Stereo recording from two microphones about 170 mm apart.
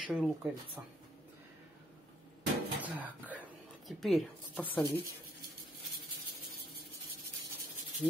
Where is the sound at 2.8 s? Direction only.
10° right (ahead or behind); by 4.8 s 10° left (ahead or behind).